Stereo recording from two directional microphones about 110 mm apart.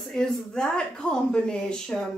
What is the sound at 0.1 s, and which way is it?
Speech, 5° left (ahead or behind).